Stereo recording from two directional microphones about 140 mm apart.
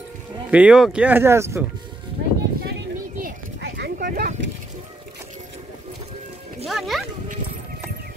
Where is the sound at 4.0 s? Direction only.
90° right.